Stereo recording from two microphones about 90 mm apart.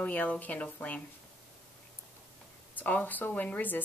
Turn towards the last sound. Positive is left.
turn(degrees=20)  # may be behind; listen again after turning